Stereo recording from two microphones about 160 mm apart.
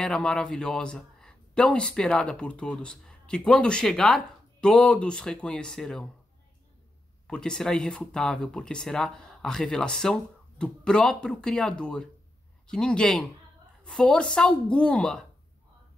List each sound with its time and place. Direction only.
0.0 s speech: 5° left (ahead or behind)
7.2 s speech: 5° left (ahead or behind)